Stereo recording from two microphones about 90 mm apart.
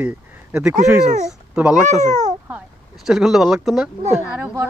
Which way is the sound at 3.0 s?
5° right (ahead or behind).